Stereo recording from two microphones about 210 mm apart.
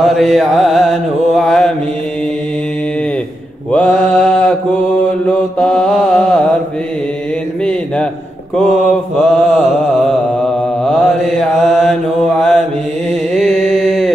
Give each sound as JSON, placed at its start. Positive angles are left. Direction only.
{"t": 0.0, "sound": "music", "side_deg": 0}
{"t": 3.7, "sound": "mantra", "side_deg": 5}
{"t": 9.2, "sound": "mantra", "side_deg": 5}
{"t": 13.4, "sound": "music", "side_deg": 0}